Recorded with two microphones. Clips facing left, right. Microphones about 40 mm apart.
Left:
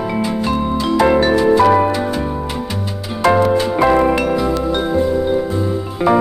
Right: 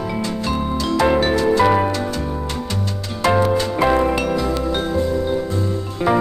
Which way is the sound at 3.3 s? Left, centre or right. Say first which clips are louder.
Left 2 dB; centre.